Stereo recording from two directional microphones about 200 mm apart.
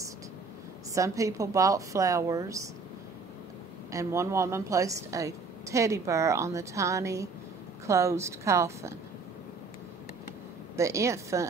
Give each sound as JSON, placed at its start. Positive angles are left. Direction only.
{"t": 0.9, "sound": "a woman's voice", "side_deg": -15}
{"t": 3.9, "sound": "a woman's voice", "side_deg": -15}
{"t": 10.8, "sound": "a woman's voice", "side_deg": -15}